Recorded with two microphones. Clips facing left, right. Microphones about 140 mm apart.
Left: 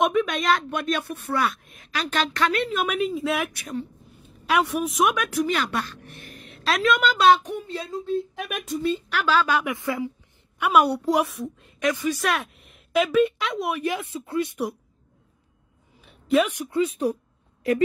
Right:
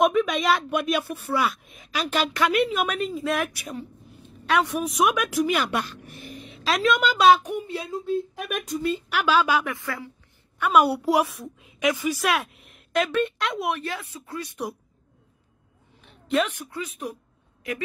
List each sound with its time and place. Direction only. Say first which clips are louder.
0.0 s speech: right 1 dB; centre (ahead or behind)
6.0 s speech: right 4 dB; centre (ahead or behind)
9.2 s speech: right 1 dB; 15° right (ahead or behind)
9.7 s a woman's voice: left 5 dB; 20° left (ahead or behind)
10.7 s speech: even; 5° right (ahead or behind)
13.7 s speech: left 6 dB; 15° left (ahead or behind)
16.0 s a sound: left 3 dB; 5° left (ahead or behind)
16.7 s a woman's voice: left 10 dB; 30° left (ahead or behind)